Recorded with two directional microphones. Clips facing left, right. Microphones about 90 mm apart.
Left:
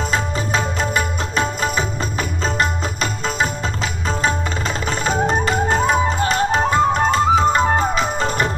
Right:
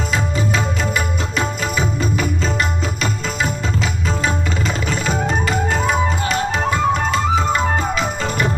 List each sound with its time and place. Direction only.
0.9 s music: 35° left (ahead or behind)
4.8 s music: 35° left (ahead or behind)